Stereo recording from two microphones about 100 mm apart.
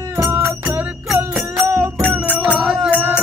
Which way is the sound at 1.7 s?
30° right (ahead or behind).